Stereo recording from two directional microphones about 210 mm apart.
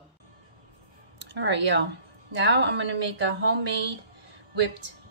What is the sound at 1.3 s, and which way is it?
Speech, 60° right (ahead or behind).